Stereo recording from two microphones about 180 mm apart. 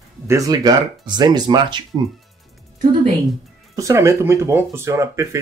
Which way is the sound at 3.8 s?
15° right (ahead or behind).